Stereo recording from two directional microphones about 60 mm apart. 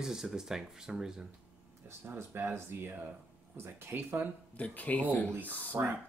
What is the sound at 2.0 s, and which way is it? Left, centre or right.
Speech, right.